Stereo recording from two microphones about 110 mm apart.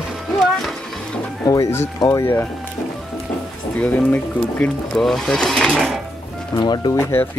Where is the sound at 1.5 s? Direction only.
25° left (ahead or behind).